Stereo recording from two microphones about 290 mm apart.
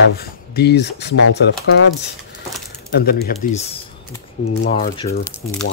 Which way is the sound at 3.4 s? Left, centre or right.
Left.